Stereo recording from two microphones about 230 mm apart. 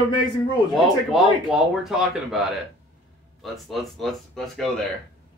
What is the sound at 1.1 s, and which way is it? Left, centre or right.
Speech, centre.